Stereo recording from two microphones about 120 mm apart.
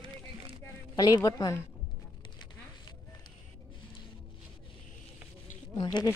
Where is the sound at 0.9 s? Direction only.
30° left (ahead or behind).